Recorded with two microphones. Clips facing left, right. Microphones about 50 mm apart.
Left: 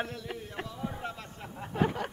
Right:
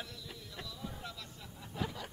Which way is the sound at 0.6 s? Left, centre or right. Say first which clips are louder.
Left 6 dB; left.